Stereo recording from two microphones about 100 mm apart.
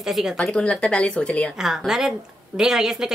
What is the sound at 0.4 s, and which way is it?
Speech, 10° left (ahead or behind).